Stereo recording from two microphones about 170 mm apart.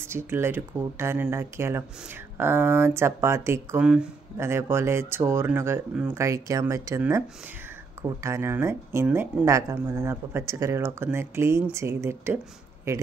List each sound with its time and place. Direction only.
0.0 s speech: 15° right (ahead or behind)